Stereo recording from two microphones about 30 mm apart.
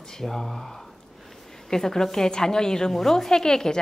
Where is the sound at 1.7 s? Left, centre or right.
Centre.